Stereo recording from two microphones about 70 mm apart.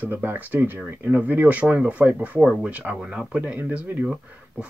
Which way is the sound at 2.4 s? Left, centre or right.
Centre.